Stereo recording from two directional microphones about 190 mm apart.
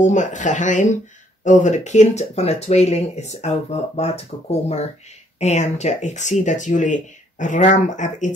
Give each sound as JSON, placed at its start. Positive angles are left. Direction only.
{"t": 0.0, "sound": "speech", "side_deg": 40}